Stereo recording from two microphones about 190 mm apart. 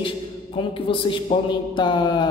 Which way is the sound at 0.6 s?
25° left (ahead or behind).